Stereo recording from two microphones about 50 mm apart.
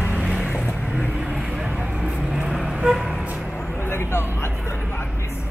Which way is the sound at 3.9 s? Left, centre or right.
Left.